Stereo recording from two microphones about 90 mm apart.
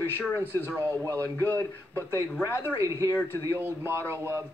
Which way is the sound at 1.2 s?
20° left (ahead or behind).